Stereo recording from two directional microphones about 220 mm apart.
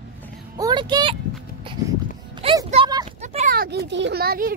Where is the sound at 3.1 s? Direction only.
30° right (ahead or behind).